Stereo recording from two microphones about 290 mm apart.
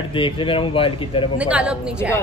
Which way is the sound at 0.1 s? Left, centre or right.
Centre.